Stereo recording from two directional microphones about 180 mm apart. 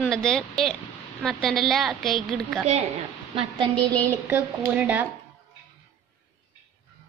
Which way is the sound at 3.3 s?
25° right (ahead or behind).